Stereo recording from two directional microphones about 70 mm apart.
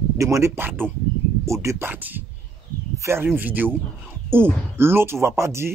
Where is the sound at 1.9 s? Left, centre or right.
Right.